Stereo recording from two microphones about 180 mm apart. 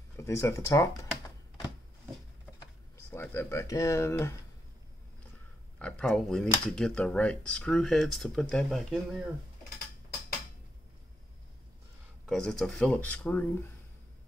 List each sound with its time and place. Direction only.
0.2 s speech: 15° left (ahead or behind)
3.1 s speech: 10° left (ahead or behind)
5.8 s speech: 5° left (ahead or behind)
12.3 s speech: 5° left (ahead or behind)